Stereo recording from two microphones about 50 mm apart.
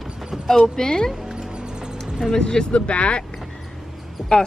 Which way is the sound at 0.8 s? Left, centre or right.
Centre.